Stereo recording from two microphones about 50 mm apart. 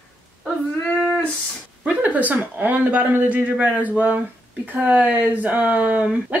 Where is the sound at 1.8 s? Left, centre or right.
Right.